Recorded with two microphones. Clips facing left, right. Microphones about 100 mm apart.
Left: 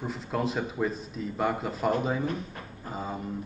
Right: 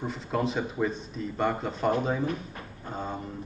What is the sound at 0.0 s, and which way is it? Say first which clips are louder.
Speech: right 1 dB; centre (ahead or behind).